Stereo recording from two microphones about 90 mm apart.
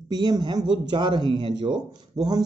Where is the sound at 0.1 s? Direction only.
50° right (ahead or behind).